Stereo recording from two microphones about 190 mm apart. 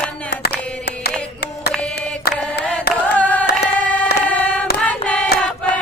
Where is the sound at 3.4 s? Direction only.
60° left (ahead or behind).